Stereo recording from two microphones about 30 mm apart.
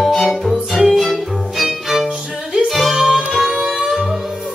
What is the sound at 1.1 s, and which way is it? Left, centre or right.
Violin, centre.